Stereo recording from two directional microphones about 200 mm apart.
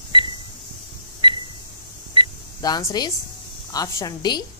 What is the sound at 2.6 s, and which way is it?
Speech, 15° left (ahead or behind).